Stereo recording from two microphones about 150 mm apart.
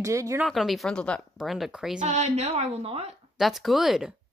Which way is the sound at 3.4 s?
Centre (ahead or behind).